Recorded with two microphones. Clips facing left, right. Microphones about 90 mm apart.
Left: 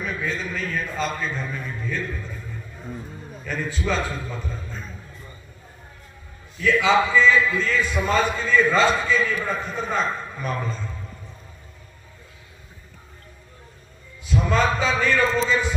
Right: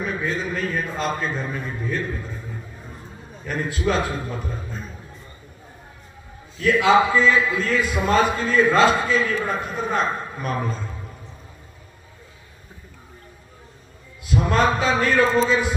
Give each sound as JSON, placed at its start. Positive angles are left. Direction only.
{"t": 0.0, "sound": "a sound", "side_deg": -5}
{"t": 0.7, "sound": "a man's voice", "side_deg": -5}
{"t": 3.3, "sound": "a man's voice", "side_deg": -5}
{"t": 6.6, "sound": "a man's voice", "side_deg": -5}
{"t": 14.5, "sound": "a man's voice", "side_deg": -5}